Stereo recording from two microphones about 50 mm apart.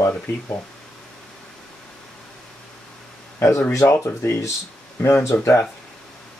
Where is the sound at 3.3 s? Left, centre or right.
Left.